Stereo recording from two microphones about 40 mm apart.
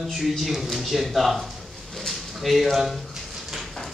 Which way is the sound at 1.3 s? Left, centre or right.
Centre.